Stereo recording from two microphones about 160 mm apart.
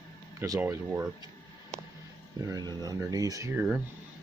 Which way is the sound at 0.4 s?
15° right (ahead or behind).